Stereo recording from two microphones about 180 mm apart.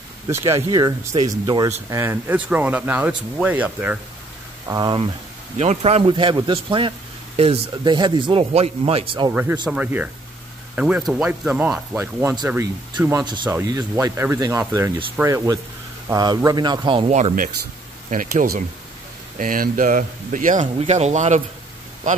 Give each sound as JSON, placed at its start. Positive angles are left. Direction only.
{"t": 0.3, "sound": "speech", "side_deg": -15}
{"t": 4.6, "sound": "speech", "side_deg": -25}
{"t": 5.6, "sound": "speech", "side_deg": -35}
{"t": 9.3, "sound": "speech", "side_deg": -10}
{"t": 17.1, "sound": "speech", "side_deg": -40}